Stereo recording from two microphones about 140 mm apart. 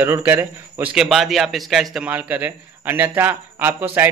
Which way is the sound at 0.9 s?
Centre (ahead or behind).